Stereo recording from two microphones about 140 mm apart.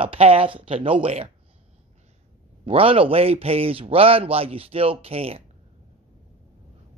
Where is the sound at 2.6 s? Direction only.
40° right (ahead or behind).